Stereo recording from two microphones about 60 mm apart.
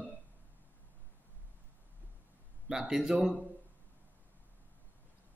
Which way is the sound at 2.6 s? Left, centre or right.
Centre.